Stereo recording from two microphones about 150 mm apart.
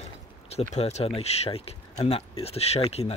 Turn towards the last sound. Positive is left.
turn(degrees=45)  # may be behind; listen again after turning